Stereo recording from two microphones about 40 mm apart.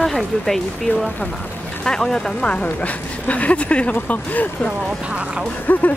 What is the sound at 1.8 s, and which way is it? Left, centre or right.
Speech, centre.